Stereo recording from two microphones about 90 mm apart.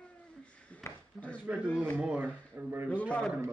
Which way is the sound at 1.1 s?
15° left (ahead or behind).